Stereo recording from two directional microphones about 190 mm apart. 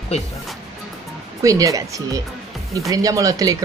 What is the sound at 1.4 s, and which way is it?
Speech, 15° right (ahead or behind).